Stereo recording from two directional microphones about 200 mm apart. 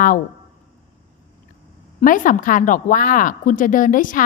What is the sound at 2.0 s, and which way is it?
A woman's voice, 40° left (ahead or behind).